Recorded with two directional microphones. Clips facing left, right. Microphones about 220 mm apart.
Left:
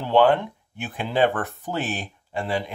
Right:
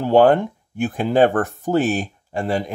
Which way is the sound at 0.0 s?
45° right (ahead or behind).